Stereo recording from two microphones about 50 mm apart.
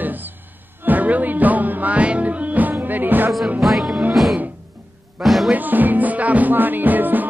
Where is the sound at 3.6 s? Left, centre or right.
Centre.